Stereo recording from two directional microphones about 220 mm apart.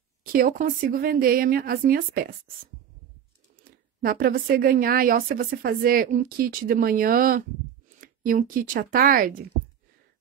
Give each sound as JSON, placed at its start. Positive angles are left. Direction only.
{"t": 0.2, "sound": "speech", "side_deg": -40}
{"t": 3.6, "sound": "speech", "side_deg": -40}